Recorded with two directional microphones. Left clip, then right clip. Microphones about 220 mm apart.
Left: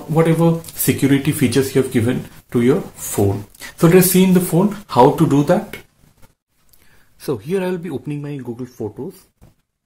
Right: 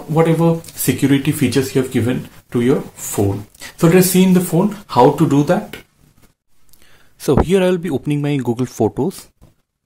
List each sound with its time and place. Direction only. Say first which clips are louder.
0.1 s speech: right 1 dB; centre (ahead or behind)
7.2 s speech: right 7 dB; 25° right (ahead or behind); by 9.1 s 40° right (ahead or behind)